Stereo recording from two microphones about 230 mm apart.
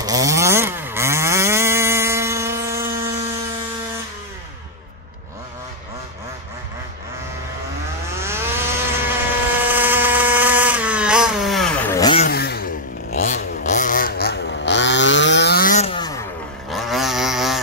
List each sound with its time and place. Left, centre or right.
0.0 s chainsaw: centre
8.2 s vehicle: centre
12.3 s vehicle: left; by 16.2 s centre
16.7 s a sound: centre